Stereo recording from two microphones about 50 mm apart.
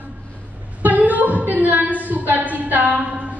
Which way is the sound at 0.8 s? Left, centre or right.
Right.